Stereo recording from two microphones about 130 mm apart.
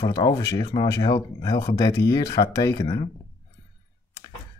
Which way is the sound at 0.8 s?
20° left (ahead or behind).